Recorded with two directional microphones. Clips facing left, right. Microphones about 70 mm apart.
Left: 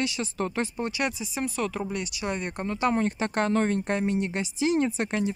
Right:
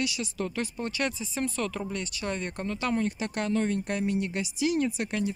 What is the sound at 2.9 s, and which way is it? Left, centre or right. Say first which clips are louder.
Speech: left 3 dB; left.